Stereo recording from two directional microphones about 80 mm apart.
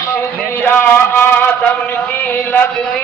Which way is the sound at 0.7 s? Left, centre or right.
Left.